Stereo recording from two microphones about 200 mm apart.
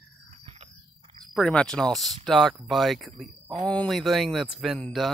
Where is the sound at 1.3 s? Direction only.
5° left (ahead or behind).